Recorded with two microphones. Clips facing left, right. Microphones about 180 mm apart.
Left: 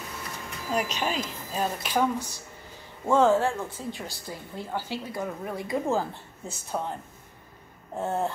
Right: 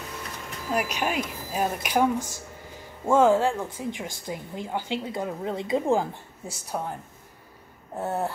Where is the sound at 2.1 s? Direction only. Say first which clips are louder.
Right 3 dB; 45° right (ahead or behind).